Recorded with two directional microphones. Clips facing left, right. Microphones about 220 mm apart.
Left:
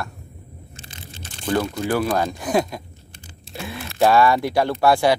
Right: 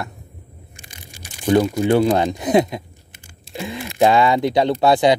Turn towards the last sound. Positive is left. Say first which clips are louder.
# right 3 dB
turn(degrees=-20)  # may be behind; listen again after turning